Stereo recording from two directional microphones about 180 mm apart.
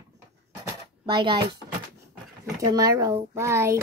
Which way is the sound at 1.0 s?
25° right (ahead or behind).